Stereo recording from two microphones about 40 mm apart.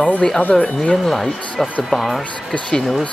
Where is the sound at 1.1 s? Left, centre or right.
Centre.